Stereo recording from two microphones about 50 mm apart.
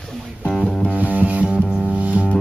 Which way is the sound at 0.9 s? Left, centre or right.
Right.